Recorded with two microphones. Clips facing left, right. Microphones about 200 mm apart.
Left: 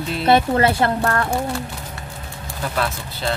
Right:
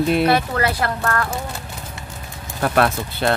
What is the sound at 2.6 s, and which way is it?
Speech, 60° right (ahead or behind).